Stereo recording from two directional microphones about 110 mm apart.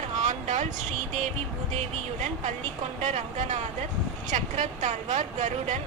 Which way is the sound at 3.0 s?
90° right.